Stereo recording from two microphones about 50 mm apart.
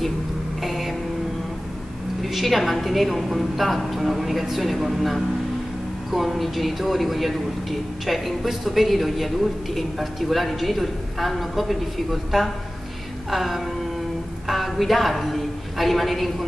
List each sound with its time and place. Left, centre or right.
0.6 s vehicle: centre
2.2 s a man's voice: centre